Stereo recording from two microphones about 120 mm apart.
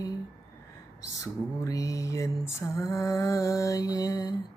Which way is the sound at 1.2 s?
25° left (ahead or behind).